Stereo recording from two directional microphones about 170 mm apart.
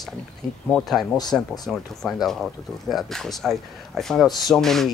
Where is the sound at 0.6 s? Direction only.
Centre (ahead or behind).